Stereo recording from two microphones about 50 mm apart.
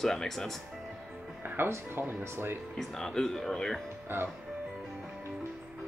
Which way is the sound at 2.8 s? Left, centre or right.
Centre.